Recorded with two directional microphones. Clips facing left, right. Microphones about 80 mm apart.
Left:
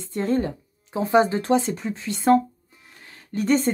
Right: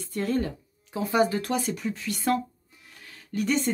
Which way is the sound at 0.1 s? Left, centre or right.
Left.